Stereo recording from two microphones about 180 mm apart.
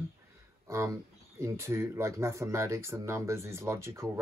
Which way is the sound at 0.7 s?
15° right (ahead or behind).